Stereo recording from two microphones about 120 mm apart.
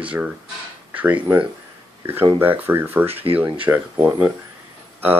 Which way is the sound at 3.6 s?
15° right (ahead or behind).